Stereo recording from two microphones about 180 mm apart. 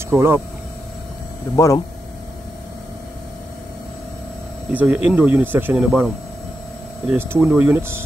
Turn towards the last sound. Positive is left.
turn(degrees=-10)  # may be behind; listen again after turning